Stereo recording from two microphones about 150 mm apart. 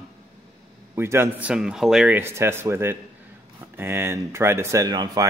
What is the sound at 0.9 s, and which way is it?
Speech, 15° right (ahead or behind).